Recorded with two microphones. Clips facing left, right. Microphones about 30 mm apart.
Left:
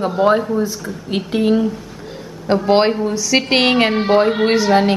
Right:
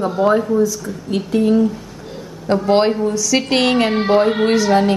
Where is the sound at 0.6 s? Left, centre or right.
Left.